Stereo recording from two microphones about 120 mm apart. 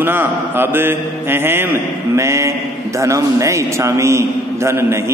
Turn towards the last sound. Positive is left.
turn(degrees=-20)  # may be behind; listen again after turning